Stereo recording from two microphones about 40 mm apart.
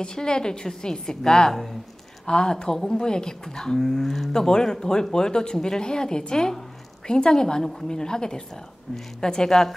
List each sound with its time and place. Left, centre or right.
0.0 s a woman's voice: centre
3.8 s speech: centre
4.3 s a woman's voice: centre